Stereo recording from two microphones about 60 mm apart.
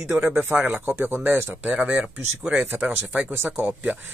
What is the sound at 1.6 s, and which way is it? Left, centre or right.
Speech, centre.